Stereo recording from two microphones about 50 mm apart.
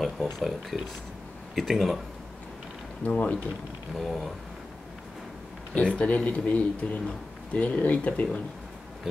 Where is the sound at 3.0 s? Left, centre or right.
Left.